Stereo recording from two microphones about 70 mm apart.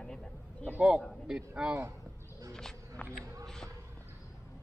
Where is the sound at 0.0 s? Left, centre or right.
Centre.